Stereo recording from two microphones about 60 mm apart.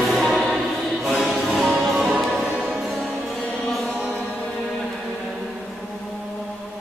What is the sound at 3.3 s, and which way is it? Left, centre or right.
Music, centre.